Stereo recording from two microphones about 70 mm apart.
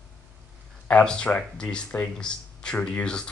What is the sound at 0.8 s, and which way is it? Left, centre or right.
Speech, centre.